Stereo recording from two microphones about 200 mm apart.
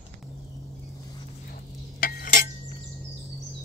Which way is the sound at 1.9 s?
45° left (ahead or behind).